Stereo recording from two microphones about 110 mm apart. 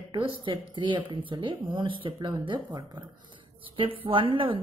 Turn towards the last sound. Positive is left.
turn(degrees=-55)  # may be behind; listen again after turning